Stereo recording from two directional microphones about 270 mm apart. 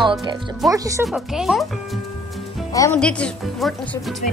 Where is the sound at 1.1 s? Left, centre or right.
Centre.